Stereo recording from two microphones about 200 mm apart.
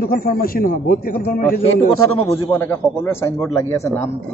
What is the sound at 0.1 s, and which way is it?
A man's voice, 45° left (ahead or behind).